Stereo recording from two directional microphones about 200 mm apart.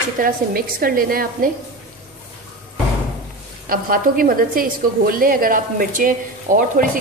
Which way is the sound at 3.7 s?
45° right (ahead or behind).